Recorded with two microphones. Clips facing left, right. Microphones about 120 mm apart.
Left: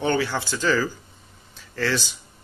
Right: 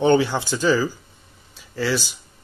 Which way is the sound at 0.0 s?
20° right (ahead or behind).